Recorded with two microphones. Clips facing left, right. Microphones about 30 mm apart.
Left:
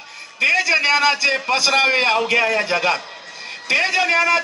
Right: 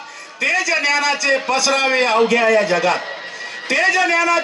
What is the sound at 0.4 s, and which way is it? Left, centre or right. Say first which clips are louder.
A man's voice: left 1 dB; left.